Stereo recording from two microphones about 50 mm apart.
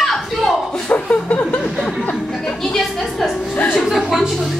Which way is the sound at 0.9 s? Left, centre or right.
Left.